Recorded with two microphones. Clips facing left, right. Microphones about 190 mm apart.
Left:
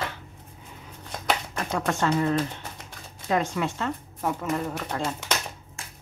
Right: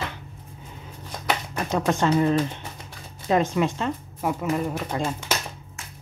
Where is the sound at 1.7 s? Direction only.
20° right (ahead or behind).